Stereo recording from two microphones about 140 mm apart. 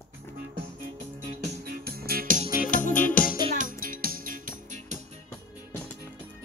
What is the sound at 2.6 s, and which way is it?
Music, 70° left (ahead or behind).